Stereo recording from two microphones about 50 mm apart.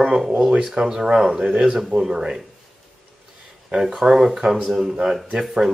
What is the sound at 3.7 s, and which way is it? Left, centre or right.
Speech, centre.